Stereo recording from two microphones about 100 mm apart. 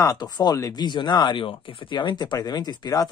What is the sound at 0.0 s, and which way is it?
Speech, 40° left (ahead or behind).